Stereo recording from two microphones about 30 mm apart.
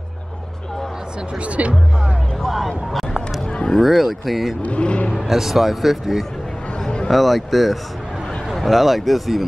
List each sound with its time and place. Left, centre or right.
1.6 s speech: right
2.4 s speech: centre
4.6 s speech: left
5.3 s speech: centre